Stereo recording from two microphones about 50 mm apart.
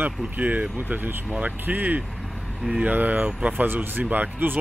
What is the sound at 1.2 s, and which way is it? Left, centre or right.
Speech, right.